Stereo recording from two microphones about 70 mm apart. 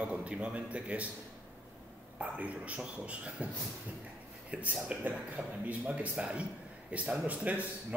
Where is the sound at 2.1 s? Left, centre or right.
Right.